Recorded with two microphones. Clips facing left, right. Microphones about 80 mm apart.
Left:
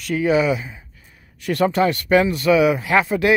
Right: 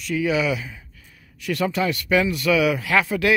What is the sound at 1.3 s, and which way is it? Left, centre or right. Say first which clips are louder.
Speech: left 5 dB; left.